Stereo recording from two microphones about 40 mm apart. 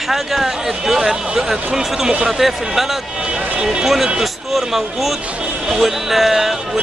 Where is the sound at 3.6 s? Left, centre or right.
Centre.